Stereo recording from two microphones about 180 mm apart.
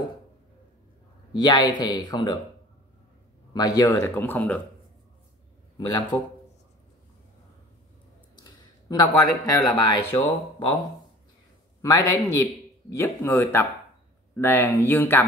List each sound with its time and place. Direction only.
1.3 s speech: 25° left (ahead or behind)
3.5 s speech: 20° left (ahead or behind)
5.8 s speech: 20° left (ahead or behind)
8.5 s speech: 20° left (ahead or behind)
11.8 s speech: 20° left (ahead or behind)